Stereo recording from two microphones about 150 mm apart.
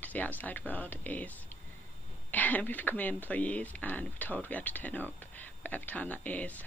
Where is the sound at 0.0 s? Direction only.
10° left (ahead or behind).